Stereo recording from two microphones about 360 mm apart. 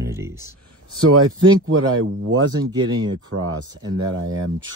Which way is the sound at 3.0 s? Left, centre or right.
Right.